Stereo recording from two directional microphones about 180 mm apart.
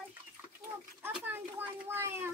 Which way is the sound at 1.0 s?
10° right (ahead or behind).